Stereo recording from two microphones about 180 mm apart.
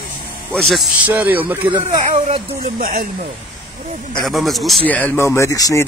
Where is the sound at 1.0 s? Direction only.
10° right (ahead or behind).